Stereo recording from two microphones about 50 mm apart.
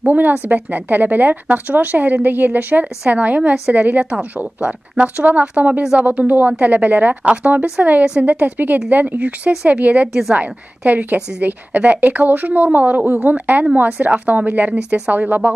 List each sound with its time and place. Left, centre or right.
0.0 s speech: right